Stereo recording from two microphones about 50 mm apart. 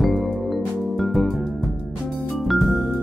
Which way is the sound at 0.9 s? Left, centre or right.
Centre.